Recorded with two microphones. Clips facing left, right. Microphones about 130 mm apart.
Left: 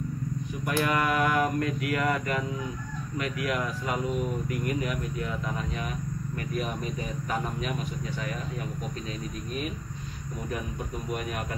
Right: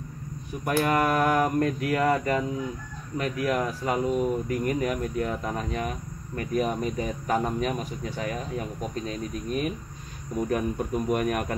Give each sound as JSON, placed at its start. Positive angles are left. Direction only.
{"t": 0.7, "sound": "speech", "side_deg": -40}
{"t": 11.1, "sound": "speech", "side_deg": -55}